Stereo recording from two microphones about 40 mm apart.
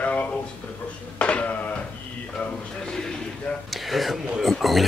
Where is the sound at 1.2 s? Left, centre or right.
Left.